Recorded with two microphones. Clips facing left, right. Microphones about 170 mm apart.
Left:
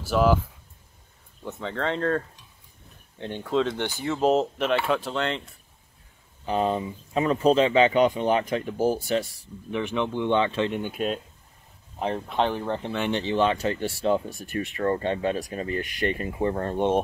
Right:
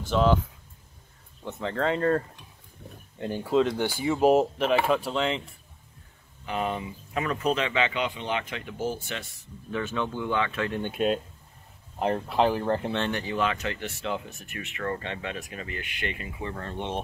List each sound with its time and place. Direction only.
0.0 s speech: 5° left (ahead or behind)
1.4 s speech: centre (ahead or behind)
6.4 s speech: 30° left (ahead or behind)
9.7 s speech: 15° left (ahead or behind)
10.8 s speech: centre (ahead or behind)
12.3 s speech: 5° right (ahead or behind)
13.1 s speech: 25° left (ahead or behind); by 17.0 s 45° left (ahead or behind)